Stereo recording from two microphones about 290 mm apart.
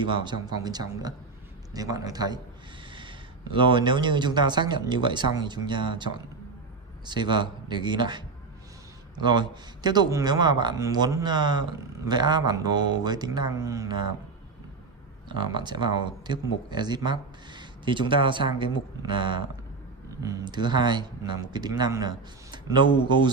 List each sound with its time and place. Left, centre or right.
0.0 s speech: centre
15.2 s speech: centre